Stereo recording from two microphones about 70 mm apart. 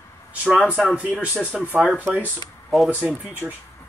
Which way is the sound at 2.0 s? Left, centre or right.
Right.